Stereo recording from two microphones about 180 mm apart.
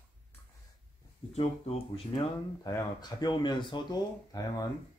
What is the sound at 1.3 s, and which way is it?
Speech, 35° left (ahead or behind).